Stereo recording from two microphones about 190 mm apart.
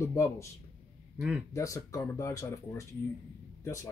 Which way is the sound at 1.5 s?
15° left (ahead or behind).